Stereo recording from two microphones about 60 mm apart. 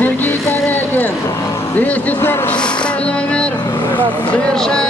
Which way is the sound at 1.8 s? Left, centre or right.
Left.